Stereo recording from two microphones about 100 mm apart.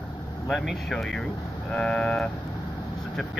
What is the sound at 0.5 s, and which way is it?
Speech, centre (ahead or behind).